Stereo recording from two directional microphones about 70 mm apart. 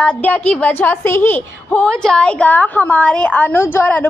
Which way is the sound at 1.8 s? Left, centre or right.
Centre.